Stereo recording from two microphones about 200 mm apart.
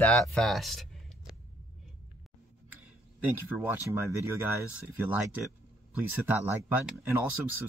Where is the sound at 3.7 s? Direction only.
15° right (ahead or behind).